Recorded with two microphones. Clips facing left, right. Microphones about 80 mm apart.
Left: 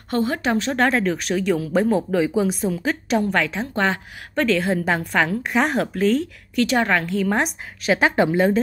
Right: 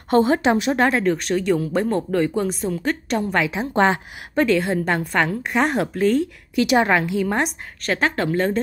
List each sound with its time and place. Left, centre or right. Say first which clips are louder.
0.1 s speech: right 5 dB; right
3.7 s a woman's voice: right 5 dB; right
4.4 s speech: right 1 dB; centre
6.6 s speech: right 2 dB; centre